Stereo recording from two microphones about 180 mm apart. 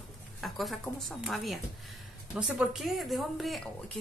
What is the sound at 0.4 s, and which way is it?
Speech, centre (ahead or behind).